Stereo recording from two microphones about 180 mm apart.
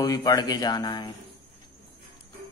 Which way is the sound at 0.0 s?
20° left (ahead or behind).